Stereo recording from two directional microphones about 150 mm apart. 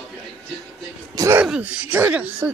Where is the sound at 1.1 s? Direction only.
20° right (ahead or behind).